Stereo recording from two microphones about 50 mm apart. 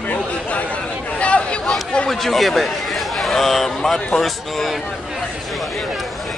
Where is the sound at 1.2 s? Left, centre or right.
Left.